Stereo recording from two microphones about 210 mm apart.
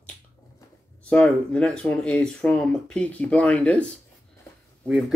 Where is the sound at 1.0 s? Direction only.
5° left (ahead or behind).